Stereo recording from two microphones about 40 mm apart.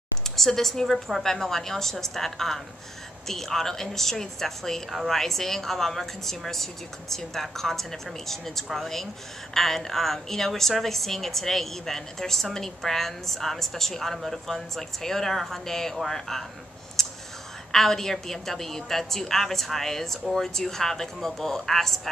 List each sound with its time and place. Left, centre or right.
0.4 s speech: centre
17.0 s whispering: centre
17.6 s speech: centre